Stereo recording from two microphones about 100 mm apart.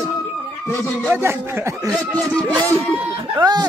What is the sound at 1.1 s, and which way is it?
Speech, 25° right (ahead or behind).